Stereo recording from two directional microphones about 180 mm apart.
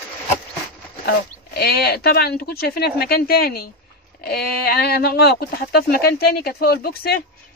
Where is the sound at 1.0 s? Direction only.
60° left (ahead or behind).